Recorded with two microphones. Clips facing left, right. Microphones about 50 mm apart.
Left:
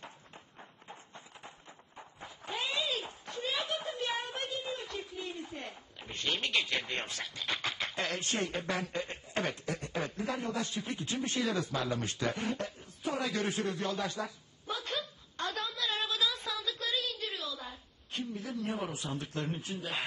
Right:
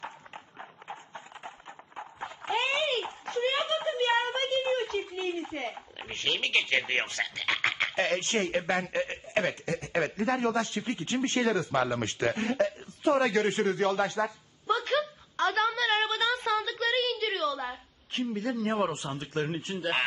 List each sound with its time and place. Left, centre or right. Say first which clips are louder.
0.0 s clip-clop: right 8 dB; right
9.8 s a man's voice: right 7 dB; right